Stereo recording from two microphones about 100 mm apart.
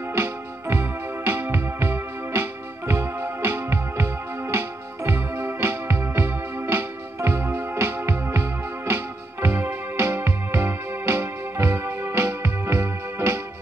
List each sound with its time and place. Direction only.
0.1 s music: 25° right (ahead or behind)